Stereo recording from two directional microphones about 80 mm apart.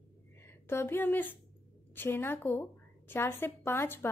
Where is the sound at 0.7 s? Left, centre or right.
Left.